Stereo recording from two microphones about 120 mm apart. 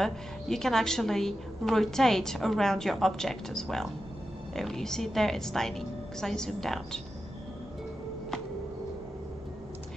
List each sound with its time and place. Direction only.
0.0 s a woman's voice: 5° left (ahead or behind)